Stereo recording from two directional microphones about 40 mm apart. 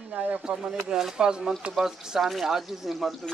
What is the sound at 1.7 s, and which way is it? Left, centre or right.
Speech, centre.